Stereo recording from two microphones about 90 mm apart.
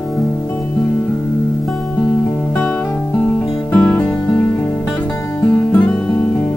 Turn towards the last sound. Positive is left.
turn(degrees=15)  # may be behind; listen again after turning